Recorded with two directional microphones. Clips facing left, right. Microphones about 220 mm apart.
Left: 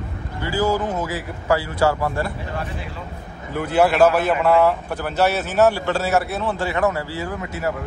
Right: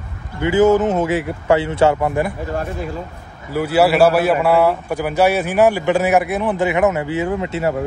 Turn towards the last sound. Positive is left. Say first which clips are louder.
# right 6 dB
turn(degrees=-25)  # may be behind; listen again after turning